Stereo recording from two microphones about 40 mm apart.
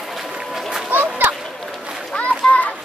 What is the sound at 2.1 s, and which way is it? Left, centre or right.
Children playing, left.